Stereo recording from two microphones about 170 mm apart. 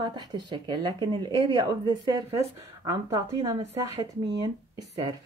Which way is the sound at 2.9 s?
20° right (ahead or behind).